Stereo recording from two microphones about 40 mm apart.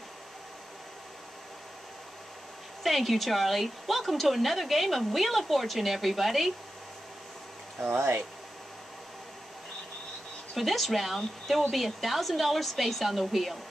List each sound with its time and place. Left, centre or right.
2.8 s a woman's voice: centre
7.8 s speech: right
10.5 s a woman's voice: centre